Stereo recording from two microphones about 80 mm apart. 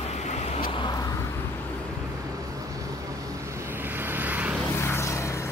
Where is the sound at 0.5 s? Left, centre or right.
Left.